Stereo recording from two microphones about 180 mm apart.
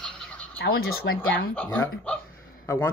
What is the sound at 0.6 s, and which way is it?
Speech, 60° left (ahead or behind).